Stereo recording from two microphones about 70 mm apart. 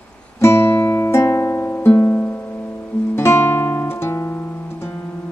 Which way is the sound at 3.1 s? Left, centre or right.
Left.